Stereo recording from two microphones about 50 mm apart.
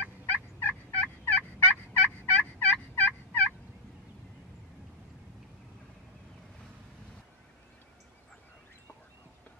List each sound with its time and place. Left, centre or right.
0.0 s fowl: left